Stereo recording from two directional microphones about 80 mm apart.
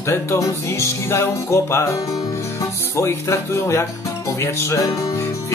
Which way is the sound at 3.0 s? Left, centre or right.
Left.